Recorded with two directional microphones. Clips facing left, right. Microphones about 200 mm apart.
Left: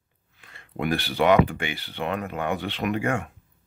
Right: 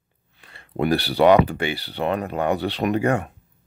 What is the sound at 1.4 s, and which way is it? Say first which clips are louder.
Speech: right 5 dB; 35° right (ahead or behind).